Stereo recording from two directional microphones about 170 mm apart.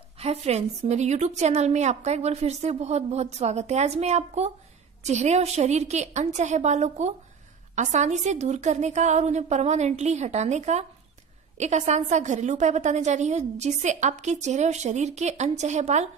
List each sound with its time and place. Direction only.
0.2 s a woman's voice: 40° right (ahead or behind)